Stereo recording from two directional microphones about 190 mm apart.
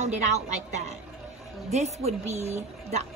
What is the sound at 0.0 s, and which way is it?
A woman's voice, 35° right (ahead or behind).